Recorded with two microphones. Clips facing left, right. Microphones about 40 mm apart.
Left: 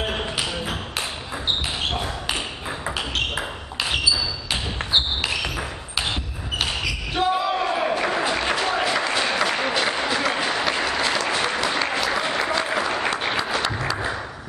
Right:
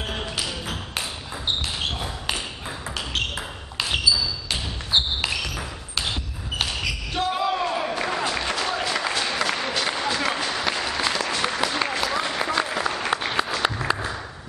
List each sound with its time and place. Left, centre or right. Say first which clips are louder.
0.0 s music: left 3 dB; centre
4.0 s basketball bounce: even; centre
5.4 s ping: left 3 dB; centre
6.6 s basketball bounce: left 1 dB; centre
9.1 s applause: left 3 dB; centre